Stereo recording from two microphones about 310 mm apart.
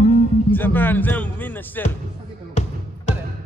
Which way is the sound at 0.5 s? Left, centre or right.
Centre.